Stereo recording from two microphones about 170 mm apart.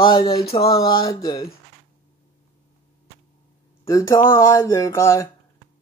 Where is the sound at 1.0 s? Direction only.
20° left (ahead or behind).